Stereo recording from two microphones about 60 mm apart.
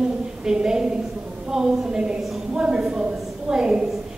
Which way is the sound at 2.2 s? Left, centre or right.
Centre.